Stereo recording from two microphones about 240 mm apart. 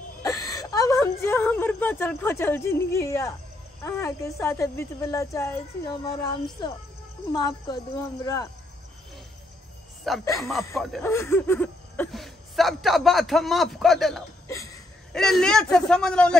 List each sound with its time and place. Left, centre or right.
0.2 s whimper: centre
3.8 s speech: centre
10.2 s speech: centre
10.7 s speech: centre